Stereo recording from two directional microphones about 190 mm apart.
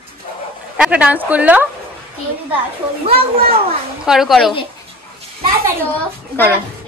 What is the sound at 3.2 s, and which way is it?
Speech, 50° right (ahead or behind).